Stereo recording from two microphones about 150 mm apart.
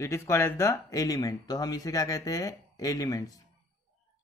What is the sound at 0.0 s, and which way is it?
A man's voice, 20° left (ahead or behind).